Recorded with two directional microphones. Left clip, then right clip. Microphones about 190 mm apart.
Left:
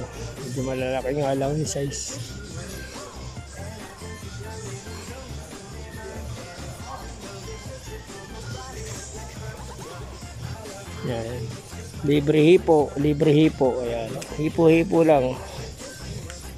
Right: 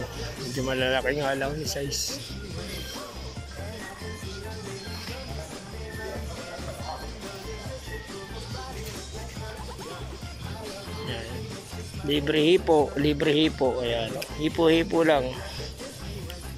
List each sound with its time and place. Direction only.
0.6 s speech: 5° left (ahead or behind)
12.1 s speech: 15° left (ahead or behind)
12.6 s speech: centre (ahead or behind)
13.5 s speech: 5° left (ahead or behind)
14.4 s speech: 15° left (ahead or behind)